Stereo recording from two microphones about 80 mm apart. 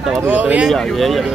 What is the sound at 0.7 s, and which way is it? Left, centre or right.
Music, centre.